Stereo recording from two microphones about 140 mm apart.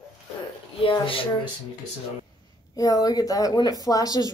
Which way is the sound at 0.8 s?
40° left (ahead or behind).